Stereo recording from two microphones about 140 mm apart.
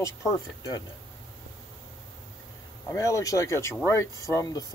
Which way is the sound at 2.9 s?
25° left (ahead or behind).